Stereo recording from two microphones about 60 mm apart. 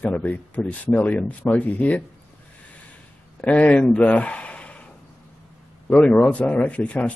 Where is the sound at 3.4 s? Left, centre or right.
Left.